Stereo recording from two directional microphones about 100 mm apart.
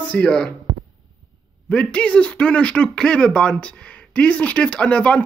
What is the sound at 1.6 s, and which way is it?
A man's voice, 10° left (ahead or behind).